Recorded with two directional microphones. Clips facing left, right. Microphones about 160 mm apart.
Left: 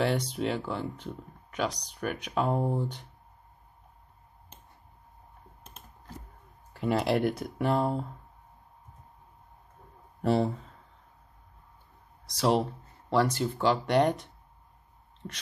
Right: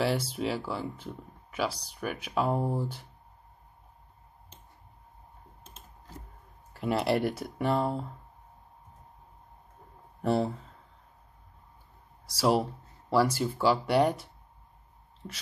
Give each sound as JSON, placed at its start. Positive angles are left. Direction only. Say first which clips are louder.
{"t": 0.0, "sound": "speech", "louder": "left 1 dB", "side_deg": -5}
{"t": 5.6, "sound": "typing", "louder": "left 3 dB", "side_deg": 55}
{"t": 6.7, "sound": "speech", "louder": "left 1 dB", "side_deg": -5}
{"t": 10.2, "sound": "speech", "louder": "left 1 dB", "side_deg": 0}
{"t": 12.3, "sound": "speech", "louder": "even", "side_deg": -5}